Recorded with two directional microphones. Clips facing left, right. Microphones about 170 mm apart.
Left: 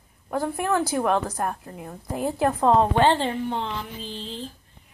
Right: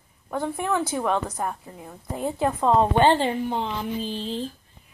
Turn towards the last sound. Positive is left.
turn(degrees=-15)  # may be behind; listen again after turning